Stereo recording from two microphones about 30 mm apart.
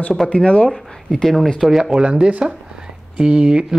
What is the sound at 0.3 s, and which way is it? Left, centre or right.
Speech, left.